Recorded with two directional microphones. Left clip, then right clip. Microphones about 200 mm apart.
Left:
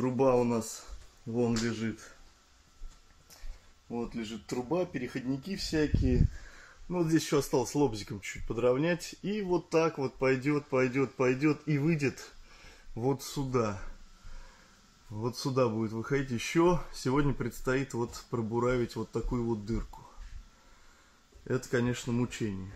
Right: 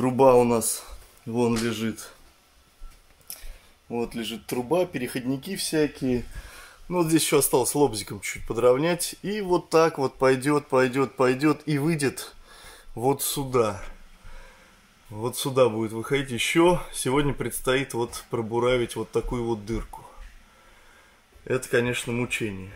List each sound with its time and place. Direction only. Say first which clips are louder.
0.0 s speech: right 9 dB; 15° right (ahead or behind)
3.9 s speech: right 8 dB; 5° right (ahead or behind)
15.1 s speech: right 8 dB; centre (ahead or behind)
21.5 s speech: right 7 dB; centre (ahead or behind)